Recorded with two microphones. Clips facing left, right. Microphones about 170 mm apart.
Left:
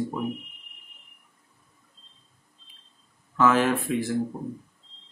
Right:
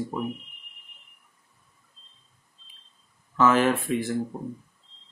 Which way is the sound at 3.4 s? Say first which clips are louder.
Right 1 dB; centre (ahead or behind).